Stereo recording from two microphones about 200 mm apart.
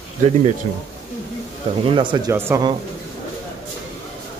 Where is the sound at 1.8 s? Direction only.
25° right (ahead or behind).